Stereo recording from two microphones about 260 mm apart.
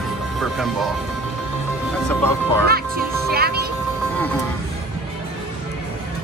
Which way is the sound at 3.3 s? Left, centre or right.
Right.